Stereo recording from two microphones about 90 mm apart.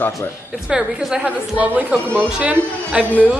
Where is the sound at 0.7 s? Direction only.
10° right (ahead or behind).